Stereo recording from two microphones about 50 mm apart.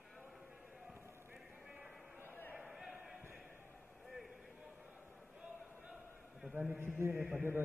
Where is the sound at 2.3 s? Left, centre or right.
Left.